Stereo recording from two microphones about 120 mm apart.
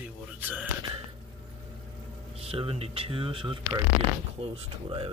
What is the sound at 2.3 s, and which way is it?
Speech, 55° right (ahead or behind).